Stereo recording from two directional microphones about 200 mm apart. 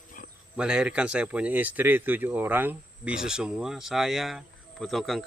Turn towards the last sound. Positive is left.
turn(degrees=0)  # may be behind; listen again after turning